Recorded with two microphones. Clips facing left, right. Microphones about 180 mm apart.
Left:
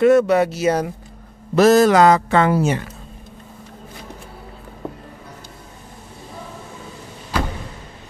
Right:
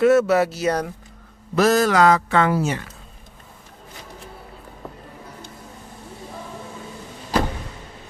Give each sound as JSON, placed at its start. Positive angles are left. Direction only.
{"t": 0.0, "sound": "speech", "side_deg": -5}
{"t": 1.5, "sound": "speech", "side_deg": 25}